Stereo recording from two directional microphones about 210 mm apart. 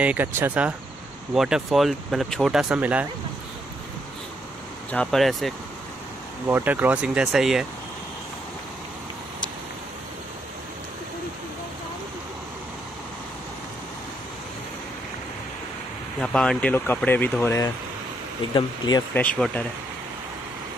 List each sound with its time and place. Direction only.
0.0 s speech: 10° right (ahead or behind)
4.9 s speech: centre (ahead or behind)
16.2 s speech: 5° left (ahead or behind); by 19.0 s 20° left (ahead or behind)
19.1 s speech: 5° left (ahead or behind)